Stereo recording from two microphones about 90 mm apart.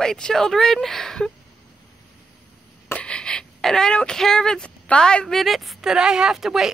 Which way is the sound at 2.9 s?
10° left (ahead or behind).